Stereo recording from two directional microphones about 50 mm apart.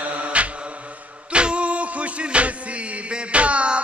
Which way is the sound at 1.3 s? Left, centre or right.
Right.